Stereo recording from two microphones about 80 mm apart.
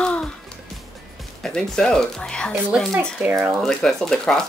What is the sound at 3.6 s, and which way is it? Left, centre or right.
Speech, centre.